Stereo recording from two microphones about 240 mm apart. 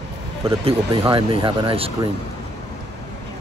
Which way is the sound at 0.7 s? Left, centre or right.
Right.